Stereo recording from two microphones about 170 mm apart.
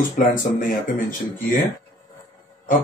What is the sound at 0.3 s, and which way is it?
Speech, 55° left (ahead or behind).